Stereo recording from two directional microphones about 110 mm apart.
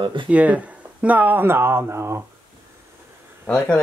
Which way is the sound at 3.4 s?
10° left (ahead or behind).